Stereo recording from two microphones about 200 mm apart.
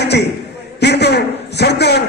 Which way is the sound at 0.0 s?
55° left (ahead or behind).